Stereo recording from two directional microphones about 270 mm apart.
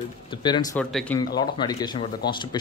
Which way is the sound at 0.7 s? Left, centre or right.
Centre.